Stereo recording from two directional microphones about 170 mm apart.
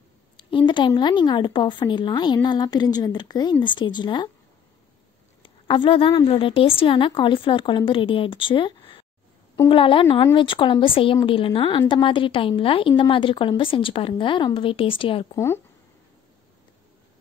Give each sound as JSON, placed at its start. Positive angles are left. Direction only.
{"t": 0.4, "sound": "a woman's voice", "side_deg": 30}
{"t": 5.4, "sound": "a woman's voice", "side_deg": 30}
{"t": 15.3, "sound": "speech", "side_deg": 15}